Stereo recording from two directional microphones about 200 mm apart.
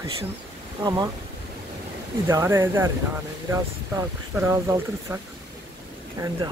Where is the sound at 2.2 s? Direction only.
15° right (ahead or behind).